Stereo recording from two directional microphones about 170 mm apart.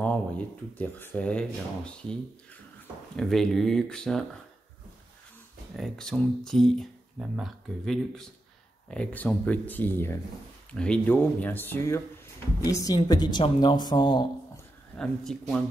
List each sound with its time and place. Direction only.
0.7 s speech: 10° left (ahead or behind)
3.2 s speech: centre (ahead or behind)
5.8 s speech: 5° left (ahead or behind)
12.7 s a woman's voice: 20° left (ahead or behind)
15.0 s speech: centre (ahead or behind)